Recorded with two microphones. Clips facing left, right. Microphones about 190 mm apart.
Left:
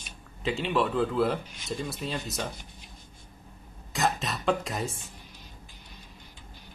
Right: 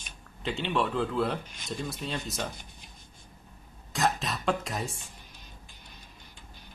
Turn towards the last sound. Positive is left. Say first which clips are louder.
# left 2 dB
turn(degrees=0)  # may be behind; listen again after turning